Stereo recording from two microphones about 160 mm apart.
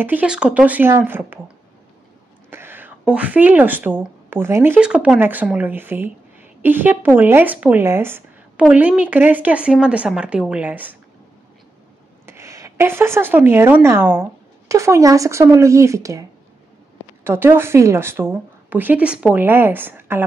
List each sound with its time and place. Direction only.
0.0 s speech: 10° right (ahead or behind)
2.5 s speech: 15° right (ahead or behind)
12.3 s speech: 20° right (ahead or behind)